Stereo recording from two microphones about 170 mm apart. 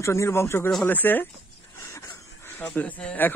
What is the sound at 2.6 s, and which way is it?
Speech, 10° left (ahead or behind).